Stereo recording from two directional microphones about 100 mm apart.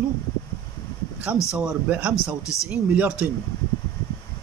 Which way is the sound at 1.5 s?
15° right (ahead or behind).